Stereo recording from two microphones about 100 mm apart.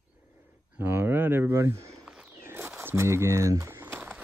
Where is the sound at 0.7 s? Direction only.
20° right (ahead or behind).